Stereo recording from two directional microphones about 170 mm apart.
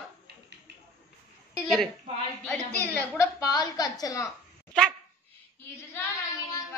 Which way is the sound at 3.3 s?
25° left (ahead or behind).